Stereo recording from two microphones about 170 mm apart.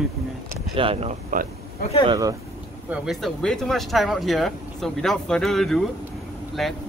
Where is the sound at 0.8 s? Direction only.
35° right (ahead or behind).